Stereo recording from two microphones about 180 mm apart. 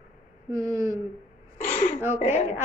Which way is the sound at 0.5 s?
15° right (ahead or behind).